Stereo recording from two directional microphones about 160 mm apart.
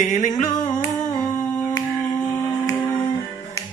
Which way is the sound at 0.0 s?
50° left (ahead or behind).